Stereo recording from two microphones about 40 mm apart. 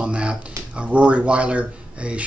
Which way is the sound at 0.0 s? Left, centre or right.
Right.